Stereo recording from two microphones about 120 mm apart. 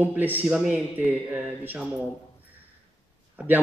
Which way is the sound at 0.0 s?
15° right (ahead or behind).